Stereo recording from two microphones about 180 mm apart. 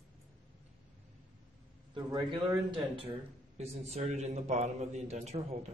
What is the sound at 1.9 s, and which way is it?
A man's voice, 25° right (ahead or behind).